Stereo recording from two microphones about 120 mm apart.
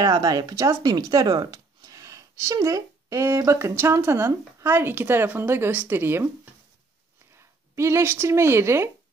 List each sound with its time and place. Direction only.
0.0 s speech: 35° right (ahead or behind)